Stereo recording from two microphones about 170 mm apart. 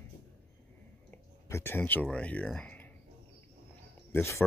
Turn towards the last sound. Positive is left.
turn(degrees=15)  # may be behind; listen again after turning